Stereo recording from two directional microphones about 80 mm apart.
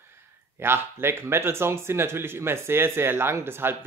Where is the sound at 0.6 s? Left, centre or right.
Right.